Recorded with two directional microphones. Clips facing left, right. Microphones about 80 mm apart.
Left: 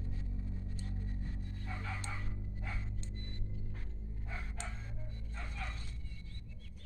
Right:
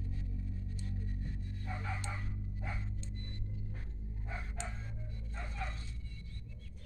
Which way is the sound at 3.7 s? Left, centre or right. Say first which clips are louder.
Right 1 dB; centre.